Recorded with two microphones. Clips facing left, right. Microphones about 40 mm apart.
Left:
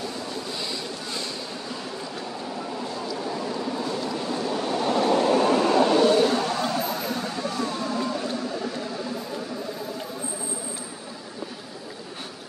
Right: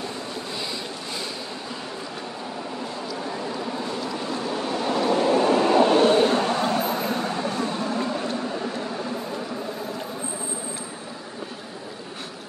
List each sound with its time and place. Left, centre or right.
0.6 s vehicle: centre
2.8 s vehicle: centre
5.7 s vehicle: right